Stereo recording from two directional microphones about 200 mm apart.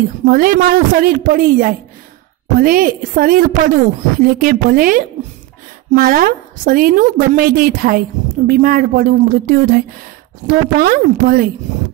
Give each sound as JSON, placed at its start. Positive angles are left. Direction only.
{"t": 0.2, "sound": "a woman's voice", "side_deg": -45}